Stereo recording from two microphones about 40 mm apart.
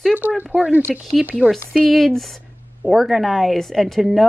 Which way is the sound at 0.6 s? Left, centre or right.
Right.